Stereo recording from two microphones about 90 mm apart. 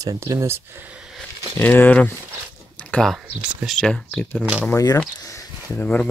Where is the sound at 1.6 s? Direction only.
20° left (ahead or behind).